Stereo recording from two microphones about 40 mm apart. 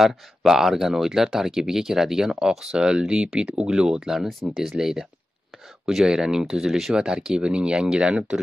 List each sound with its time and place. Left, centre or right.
0.0 s speech: centre; by 8.4 s right